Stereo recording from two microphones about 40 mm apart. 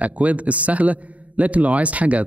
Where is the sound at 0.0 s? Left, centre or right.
Right.